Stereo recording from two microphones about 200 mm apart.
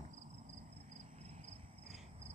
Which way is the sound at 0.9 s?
35° right (ahead or behind).